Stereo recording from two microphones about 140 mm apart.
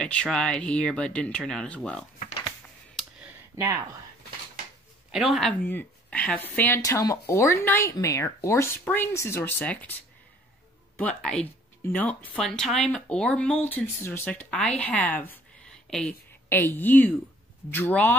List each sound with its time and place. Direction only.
0.0 s speech: 5° left (ahead or behind)
5.1 s speech: centre (ahead or behind)
5.7 s speech: 10° left (ahead or behind)
6.8 s speech: 25° left (ahead or behind)
11.0 s a woman's voice: 5° left (ahead or behind)